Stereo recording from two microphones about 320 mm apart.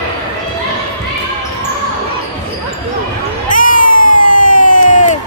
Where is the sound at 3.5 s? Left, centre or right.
Left.